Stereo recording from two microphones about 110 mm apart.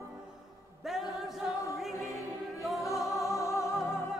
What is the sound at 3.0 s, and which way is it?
Music, 30° left (ahead or behind).